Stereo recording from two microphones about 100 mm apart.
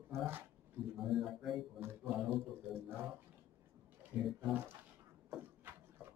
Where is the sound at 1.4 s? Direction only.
Centre (ahead or behind).